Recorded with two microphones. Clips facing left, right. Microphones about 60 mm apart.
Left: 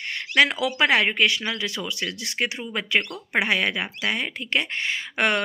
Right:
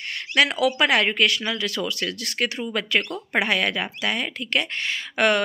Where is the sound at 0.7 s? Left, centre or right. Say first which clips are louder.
Left 3 dB; left.